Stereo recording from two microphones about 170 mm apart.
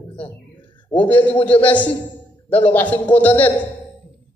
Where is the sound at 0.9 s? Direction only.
10° left (ahead or behind).